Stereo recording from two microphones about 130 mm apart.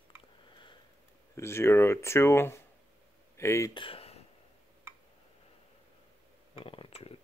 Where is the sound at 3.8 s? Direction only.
45° left (ahead or behind).